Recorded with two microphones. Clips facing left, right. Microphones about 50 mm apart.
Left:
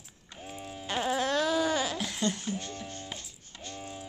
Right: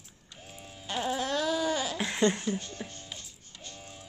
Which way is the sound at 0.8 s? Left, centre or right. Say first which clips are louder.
Left 2 dB; left.